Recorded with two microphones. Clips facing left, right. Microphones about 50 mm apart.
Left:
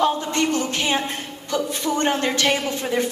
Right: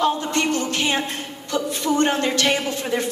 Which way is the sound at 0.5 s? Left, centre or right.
Left.